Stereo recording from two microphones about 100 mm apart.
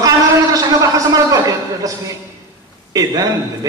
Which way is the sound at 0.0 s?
35° right (ahead or behind).